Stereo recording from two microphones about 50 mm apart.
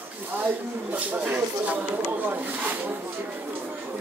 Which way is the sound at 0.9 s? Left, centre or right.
Right.